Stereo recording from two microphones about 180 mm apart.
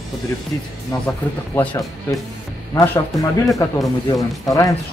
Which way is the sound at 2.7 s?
10° left (ahead or behind).